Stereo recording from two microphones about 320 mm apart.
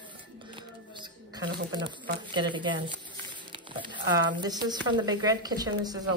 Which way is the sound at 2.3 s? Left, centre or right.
Centre.